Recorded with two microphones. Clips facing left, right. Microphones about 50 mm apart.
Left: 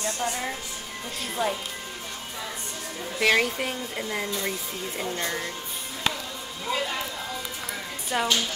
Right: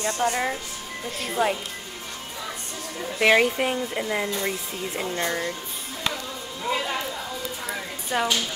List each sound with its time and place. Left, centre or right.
0.0 s speech: right
1.4 s speech: centre
3.2 s speech: centre
8.1 s speech: centre